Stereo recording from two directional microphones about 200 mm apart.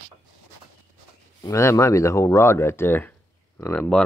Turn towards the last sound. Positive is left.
turn(degrees=5)  # may be behind; listen again after turning